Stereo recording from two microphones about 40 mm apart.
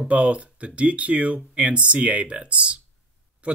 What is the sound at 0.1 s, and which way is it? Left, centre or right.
Speech, right.